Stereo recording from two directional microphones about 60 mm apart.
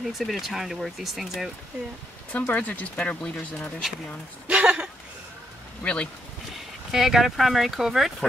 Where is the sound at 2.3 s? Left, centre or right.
Left.